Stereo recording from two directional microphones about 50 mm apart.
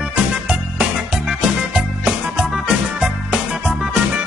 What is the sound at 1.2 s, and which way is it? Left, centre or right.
Music, right.